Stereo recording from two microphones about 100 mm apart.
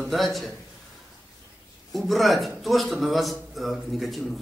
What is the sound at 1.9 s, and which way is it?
A man's voice, centre (ahead or behind).